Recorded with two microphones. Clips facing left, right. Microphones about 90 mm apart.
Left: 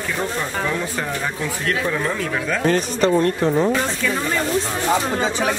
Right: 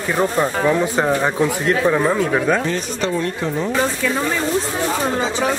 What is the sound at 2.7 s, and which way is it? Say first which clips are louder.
Speech: left 4 dB; 45° left (ahead or behind).